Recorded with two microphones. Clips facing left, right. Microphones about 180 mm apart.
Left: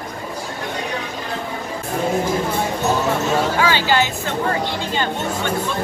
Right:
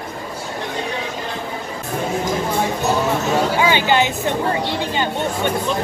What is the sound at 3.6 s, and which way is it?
Speech, 20° right (ahead or behind).